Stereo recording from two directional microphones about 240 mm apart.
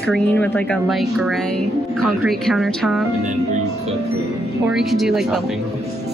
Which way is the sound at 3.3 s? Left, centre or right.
Right.